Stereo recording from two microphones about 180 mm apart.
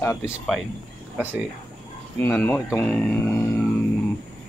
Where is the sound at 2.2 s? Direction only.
10° left (ahead or behind).